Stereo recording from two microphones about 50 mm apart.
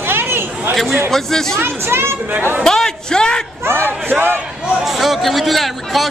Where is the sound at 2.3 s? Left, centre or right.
Right.